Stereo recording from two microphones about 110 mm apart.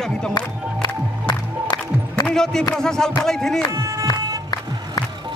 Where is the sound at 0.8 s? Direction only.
40° left (ahead or behind).